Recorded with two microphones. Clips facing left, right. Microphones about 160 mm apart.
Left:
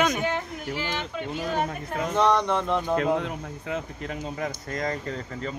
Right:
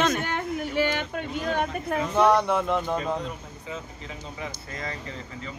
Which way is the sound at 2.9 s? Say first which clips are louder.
Left 4 dB; 65° left (ahead or behind).